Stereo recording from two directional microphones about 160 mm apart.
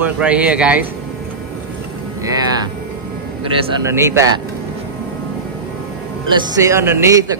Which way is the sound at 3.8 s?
15° right (ahead or behind).